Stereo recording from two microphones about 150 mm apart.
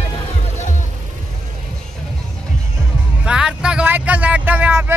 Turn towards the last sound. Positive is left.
turn(degrees=-10)  # may be behind; listen again after turning